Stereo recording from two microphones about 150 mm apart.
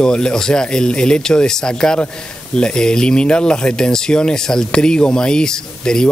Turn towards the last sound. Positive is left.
turn(degrees=5)  # may be behind; listen again after turning